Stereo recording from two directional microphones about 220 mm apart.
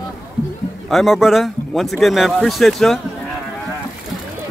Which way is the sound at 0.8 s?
Centre (ahead or behind).